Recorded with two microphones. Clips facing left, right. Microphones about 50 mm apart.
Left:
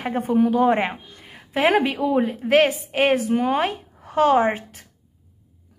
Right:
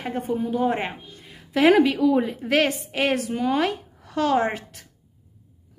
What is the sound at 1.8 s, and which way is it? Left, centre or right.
Speech, left.